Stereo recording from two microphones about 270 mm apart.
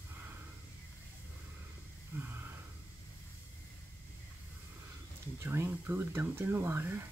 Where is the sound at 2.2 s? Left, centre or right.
Centre.